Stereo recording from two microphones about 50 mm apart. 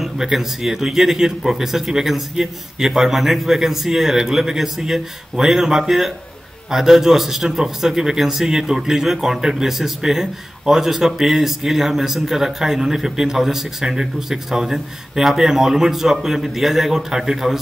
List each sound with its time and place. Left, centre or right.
0.0 s a man's voice: centre